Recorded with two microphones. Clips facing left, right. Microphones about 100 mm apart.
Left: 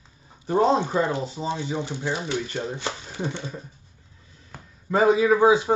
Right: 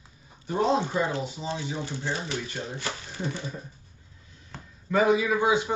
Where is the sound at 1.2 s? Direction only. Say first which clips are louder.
Left 4 dB; 35° left (ahead or behind).